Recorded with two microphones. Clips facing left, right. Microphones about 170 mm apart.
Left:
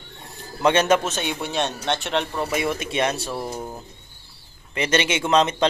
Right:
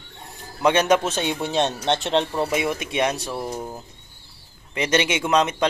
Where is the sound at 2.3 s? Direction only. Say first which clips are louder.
Right 1 dB; 10° right (ahead or behind).